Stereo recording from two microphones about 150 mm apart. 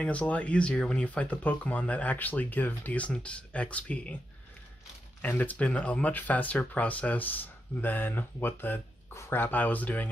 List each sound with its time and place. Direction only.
0.0 s speech: 10° left (ahead or behind)
5.2 s speech: 10° left (ahead or behind)